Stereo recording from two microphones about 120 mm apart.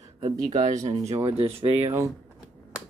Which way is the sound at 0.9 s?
60° right (ahead or behind).